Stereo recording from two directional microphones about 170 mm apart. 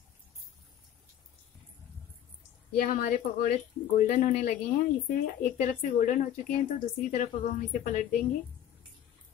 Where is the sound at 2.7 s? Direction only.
50° left (ahead or behind).